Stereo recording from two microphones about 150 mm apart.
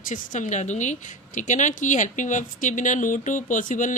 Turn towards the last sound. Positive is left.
turn(degrees=60)  # may be behind; listen again after turning